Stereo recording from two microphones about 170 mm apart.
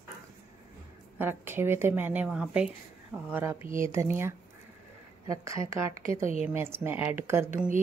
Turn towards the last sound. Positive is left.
turn(degrees=-15)  # may be behind; listen again after turning